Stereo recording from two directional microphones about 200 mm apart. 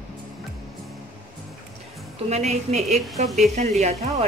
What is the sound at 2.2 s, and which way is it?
A man's voice, 35° right (ahead or behind).